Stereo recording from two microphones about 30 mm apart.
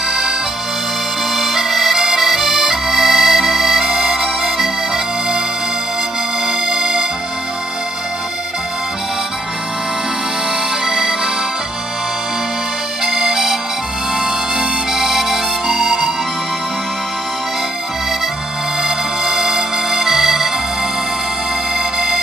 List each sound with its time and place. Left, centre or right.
1.3 s accordion: centre
6.4 s music: centre
10.9 s music: centre
13.0 s music: centre
15.6 s music: centre
19.4 s accordion: centre
21.7 s music: centre